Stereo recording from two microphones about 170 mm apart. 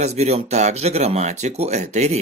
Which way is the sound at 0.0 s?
40° right (ahead or behind).